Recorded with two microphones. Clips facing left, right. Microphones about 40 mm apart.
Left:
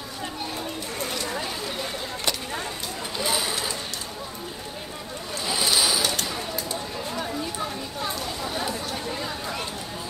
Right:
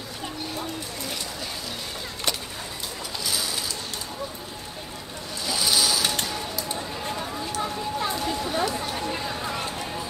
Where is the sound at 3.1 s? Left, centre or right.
Left.